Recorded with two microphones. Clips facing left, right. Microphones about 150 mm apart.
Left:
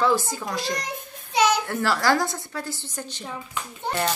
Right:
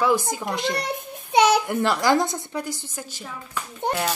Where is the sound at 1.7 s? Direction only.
20° right (ahead or behind).